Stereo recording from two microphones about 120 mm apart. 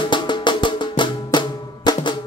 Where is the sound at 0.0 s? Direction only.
40° left (ahead or behind).